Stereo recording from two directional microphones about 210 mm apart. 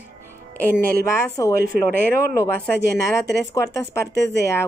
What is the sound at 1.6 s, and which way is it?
Speech, 45° right (ahead or behind).